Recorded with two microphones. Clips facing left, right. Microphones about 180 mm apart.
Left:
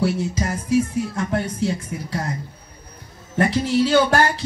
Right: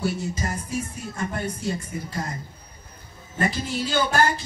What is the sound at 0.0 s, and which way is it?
A man's voice, 80° left.